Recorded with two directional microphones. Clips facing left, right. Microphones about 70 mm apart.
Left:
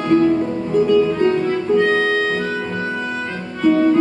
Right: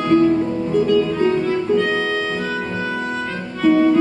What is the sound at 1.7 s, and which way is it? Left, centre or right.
Music, left.